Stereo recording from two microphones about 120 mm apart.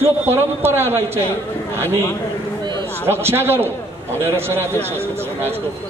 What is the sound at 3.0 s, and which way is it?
Speech, 20° right (ahead or behind).